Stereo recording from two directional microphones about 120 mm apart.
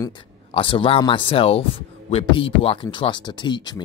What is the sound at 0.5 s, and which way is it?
Speech, 45° left (ahead or behind).